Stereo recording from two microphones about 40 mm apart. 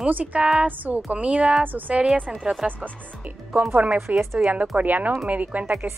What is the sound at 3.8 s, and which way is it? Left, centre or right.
Speech, right.